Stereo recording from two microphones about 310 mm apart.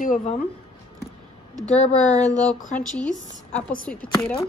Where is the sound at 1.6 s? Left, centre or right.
Left.